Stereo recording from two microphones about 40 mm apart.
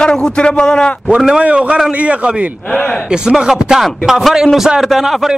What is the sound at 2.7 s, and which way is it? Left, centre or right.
Speech, centre.